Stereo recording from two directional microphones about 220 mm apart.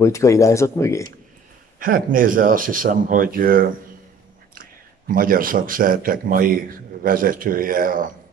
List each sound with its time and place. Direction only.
0.0 s speech: 15° left (ahead or behind)
1.8 s a man's voice: 40° right (ahead or behind)